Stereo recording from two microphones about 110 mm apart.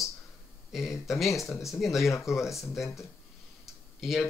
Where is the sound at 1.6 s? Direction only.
Centre (ahead or behind).